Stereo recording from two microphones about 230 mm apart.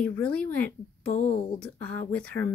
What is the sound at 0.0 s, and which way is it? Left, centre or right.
Speech, centre.